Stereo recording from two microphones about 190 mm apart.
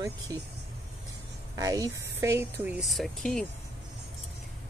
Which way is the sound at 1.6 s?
20° right (ahead or behind).